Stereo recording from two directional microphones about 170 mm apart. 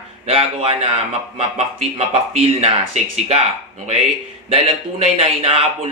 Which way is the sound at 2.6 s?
40° right (ahead or behind).